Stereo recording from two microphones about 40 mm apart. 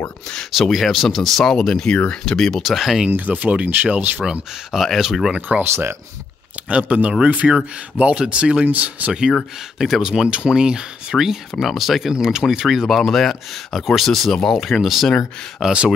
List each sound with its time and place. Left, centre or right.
0.6 s speech: centre
2.6 s speech: centre
3.2 s speech: right
4.2 s speech: centre
5.6 s speech: right
6.7 s speech: right
9.8 s speech: centre
10.0 s speech: right
11.1 s speech: centre
12.6 s speech: centre
14.5 s speech: centre